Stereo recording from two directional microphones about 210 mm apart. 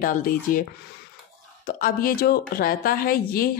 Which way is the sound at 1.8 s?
45° left (ahead or behind).